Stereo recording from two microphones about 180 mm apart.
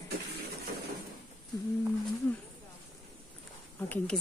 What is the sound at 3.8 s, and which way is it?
Speech, 10° left (ahead or behind).